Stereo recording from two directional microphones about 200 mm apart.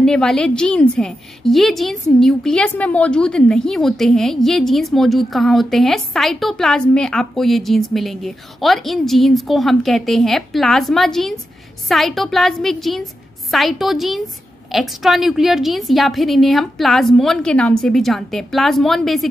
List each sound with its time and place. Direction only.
0.0 s a woman's voice: 5° left (ahead or behind)